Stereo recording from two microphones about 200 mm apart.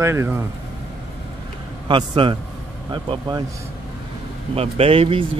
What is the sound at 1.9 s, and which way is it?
Speech, 25° right (ahead or behind).